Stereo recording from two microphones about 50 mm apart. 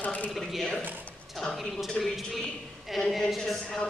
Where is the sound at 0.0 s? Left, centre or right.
Left.